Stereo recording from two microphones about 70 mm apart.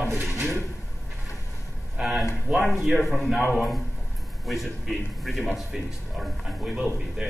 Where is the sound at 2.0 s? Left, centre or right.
Centre.